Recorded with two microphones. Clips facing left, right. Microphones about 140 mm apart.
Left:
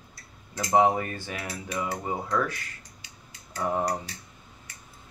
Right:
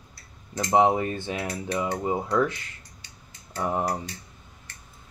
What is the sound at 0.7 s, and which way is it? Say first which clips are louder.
Speech: right 1 dB; 20° right (ahead or behind).